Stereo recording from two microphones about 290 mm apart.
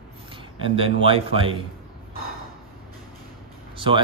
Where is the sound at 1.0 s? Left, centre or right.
Centre.